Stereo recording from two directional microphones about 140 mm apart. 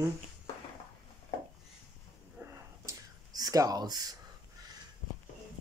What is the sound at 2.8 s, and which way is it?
Whispering, 25° right (ahead or behind).